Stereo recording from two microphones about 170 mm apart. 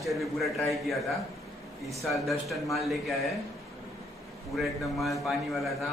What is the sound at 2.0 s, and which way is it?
A man's voice, centre (ahead or behind).